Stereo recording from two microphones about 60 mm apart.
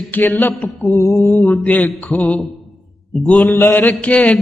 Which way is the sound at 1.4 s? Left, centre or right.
Left.